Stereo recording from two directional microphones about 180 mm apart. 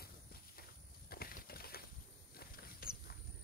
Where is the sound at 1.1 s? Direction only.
55° left (ahead or behind).